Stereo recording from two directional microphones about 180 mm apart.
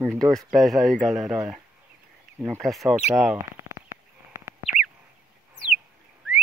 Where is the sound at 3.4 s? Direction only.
15° right (ahead or behind).